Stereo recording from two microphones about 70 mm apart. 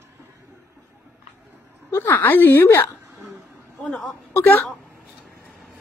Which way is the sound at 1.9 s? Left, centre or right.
Left.